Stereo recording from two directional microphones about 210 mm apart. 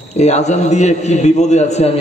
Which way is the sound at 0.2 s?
30° left (ahead or behind).